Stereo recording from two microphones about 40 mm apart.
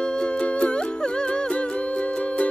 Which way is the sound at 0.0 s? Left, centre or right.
Left.